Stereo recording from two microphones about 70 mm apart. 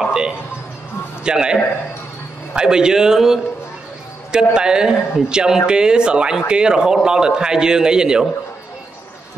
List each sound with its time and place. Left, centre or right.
0.1 s music: centre
1.2 s speech: centre